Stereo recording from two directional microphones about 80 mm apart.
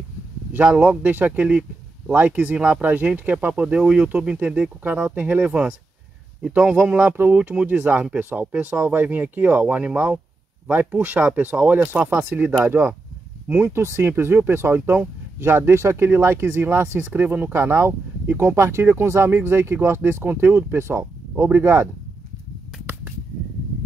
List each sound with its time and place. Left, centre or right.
0.7 s speech: centre